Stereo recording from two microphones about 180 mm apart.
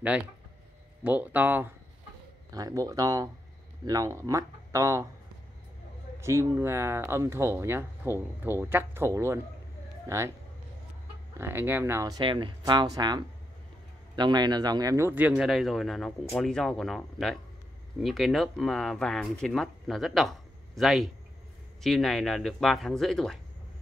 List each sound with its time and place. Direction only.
1.0 s speech: 10° right (ahead or behind)
6.2 s speech: 15° right (ahead or behind)
11.3 s speech: 15° right (ahead or behind)